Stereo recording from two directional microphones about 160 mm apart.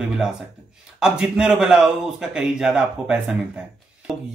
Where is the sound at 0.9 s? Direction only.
5° right (ahead or behind).